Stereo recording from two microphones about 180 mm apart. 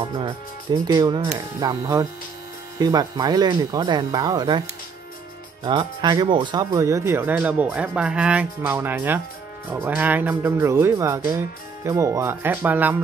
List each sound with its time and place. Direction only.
0.0 s speech: 20° right (ahead or behind)